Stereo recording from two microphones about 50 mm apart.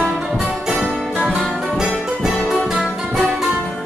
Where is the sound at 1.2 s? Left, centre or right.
Centre.